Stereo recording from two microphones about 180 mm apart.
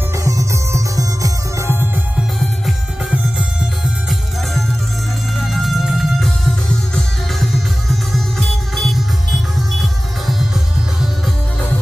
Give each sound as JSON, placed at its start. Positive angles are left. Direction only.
{"t": 0.2, "sound": "music", "side_deg": -20}
{"t": 3.3, "sound": "music", "side_deg": -5}
{"t": 5.5, "sound": "music", "side_deg": 0}
{"t": 7.9, "sound": "music", "side_deg": 0}